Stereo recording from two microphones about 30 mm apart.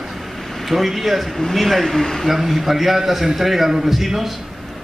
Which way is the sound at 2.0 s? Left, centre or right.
Centre.